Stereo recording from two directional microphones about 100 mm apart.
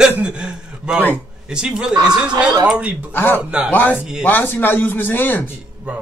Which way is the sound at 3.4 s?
10° right (ahead or behind).